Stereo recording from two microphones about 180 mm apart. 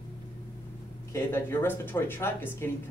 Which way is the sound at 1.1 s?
15° left (ahead or behind).